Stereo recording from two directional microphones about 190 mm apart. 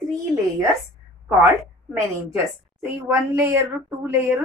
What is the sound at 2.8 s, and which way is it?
A woman's voice, 10° right (ahead or behind).